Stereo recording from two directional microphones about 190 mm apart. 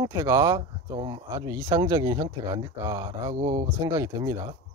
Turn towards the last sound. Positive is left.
turn(degrees=-20)  # may be behind; listen again after turning